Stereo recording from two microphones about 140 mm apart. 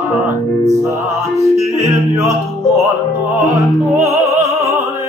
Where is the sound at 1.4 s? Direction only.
20° right (ahead or behind).